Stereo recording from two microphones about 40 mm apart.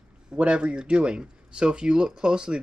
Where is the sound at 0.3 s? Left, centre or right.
Right.